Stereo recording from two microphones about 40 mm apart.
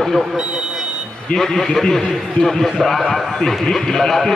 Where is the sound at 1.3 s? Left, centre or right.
Centre.